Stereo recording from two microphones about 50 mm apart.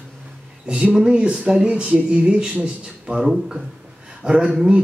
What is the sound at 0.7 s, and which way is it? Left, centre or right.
Speech, centre.